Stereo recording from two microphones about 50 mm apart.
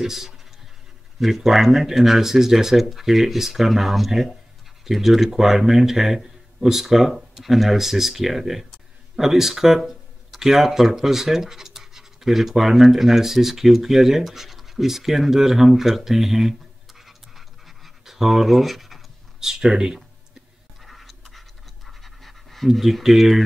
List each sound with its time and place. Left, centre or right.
0.0 s speech: centre
17.0 s scratch: centre
20.8 s scratch: centre